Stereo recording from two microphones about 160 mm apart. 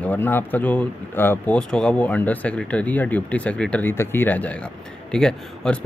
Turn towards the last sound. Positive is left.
turn(degrees=5)  # may be behind; listen again after turning